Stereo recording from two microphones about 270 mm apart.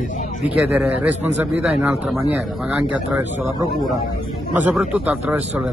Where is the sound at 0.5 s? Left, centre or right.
Centre.